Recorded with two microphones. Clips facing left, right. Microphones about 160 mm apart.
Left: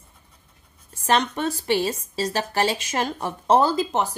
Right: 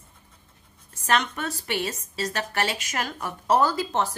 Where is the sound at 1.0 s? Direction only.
30° left (ahead or behind).